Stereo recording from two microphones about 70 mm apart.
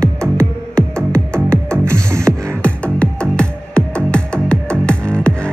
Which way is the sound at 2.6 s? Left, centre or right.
Centre.